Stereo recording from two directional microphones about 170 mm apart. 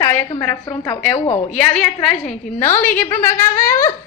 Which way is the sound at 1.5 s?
5° left (ahead or behind).